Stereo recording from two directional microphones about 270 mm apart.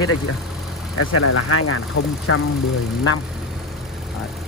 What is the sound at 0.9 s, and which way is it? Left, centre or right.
Speech, left.